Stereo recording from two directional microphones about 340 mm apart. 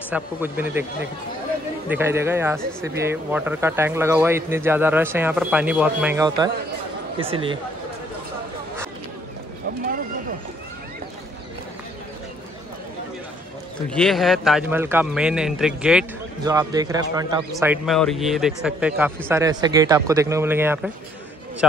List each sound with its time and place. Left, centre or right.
0.1 s speech: centre
1.9 s speech: centre
13.8 s speech: centre